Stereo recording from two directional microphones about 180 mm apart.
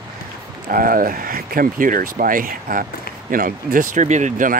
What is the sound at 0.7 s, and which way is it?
Speech, 50° right (ahead or behind).